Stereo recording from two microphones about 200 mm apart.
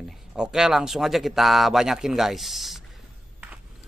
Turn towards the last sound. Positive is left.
turn(degrees=-5)  # may be behind; listen again after turning